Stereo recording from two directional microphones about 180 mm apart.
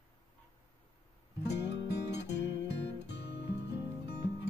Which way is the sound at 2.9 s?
70° left (ahead or behind).